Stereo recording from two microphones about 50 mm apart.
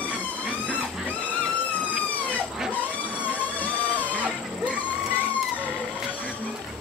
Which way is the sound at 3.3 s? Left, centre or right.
Left.